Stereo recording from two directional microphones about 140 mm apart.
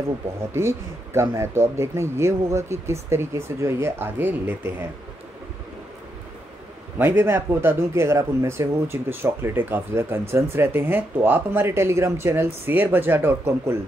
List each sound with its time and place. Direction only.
0.5 s speech: 20° right (ahead or behind)
7.0 s speech: 15° right (ahead or behind)